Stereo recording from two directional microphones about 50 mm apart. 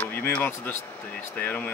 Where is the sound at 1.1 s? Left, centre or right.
Left.